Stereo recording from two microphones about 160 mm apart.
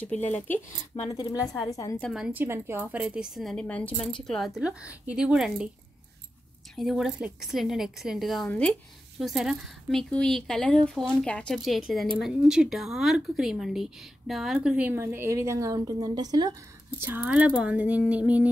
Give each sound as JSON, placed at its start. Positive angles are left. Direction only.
{"t": 0.1, "sound": "speech", "side_deg": 10}
{"t": 1.1, "sound": "a woman's voice", "side_deg": 20}
{"t": 2.0, "sound": "a woman's voice", "side_deg": 0}
{"t": 2.4, "sound": "a woman's voice", "side_deg": -15}
{"t": 6.7, "sound": "a woman's voice", "side_deg": 0}
{"t": 17.0, "sound": "a sound", "side_deg": -10}